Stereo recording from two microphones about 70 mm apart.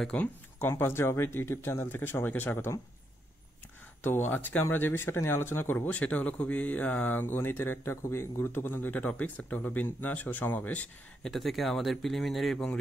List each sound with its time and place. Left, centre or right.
0.1 s speech: left
0.7 s speech: left
4.0 s speech: left
11.2 s speech: centre